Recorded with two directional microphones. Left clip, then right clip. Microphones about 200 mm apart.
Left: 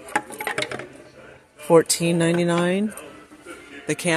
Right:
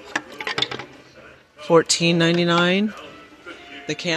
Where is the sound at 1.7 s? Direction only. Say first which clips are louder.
Right 1 dB; centre (ahead or behind).